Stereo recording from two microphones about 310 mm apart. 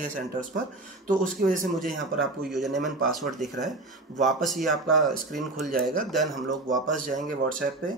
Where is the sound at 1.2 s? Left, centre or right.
Right.